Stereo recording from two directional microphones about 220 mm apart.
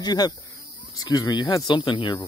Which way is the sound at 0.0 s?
20° left (ahead or behind).